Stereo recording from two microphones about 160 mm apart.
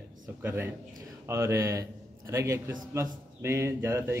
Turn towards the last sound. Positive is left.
turn(degrees=-15)  # may be behind; listen again after turning